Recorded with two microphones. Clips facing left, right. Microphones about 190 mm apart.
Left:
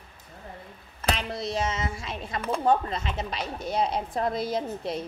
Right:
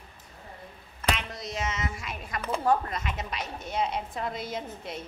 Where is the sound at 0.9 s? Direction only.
35° left (ahead or behind).